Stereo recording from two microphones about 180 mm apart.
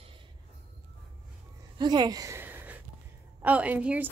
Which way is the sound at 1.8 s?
25° right (ahead or behind).